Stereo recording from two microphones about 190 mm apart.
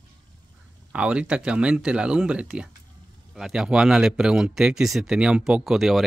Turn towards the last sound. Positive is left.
turn(degrees=0)  # may be behind; listen again after turning